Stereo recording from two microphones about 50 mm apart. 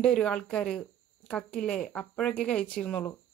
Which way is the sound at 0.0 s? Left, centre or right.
Centre.